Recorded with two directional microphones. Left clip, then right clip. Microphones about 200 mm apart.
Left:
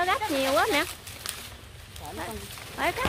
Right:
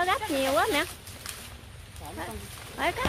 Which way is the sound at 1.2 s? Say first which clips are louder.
Left 4 dB; 40° left (ahead or behind).